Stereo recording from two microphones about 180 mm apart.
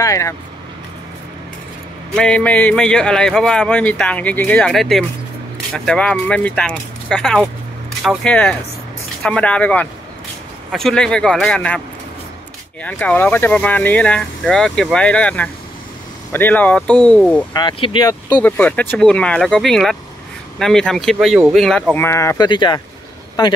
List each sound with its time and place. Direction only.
0.0 s speech: 15° left (ahead or behind)
2.1 s a man's voice: 5° left (ahead or behind)
12.8 s speech: 10° left (ahead or behind)
17.6 s speech: 25° left (ahead or behind)
18.4 s a man's voice: 10° left (ahead or behind); by 22.8 s 25° left (ahead or behind)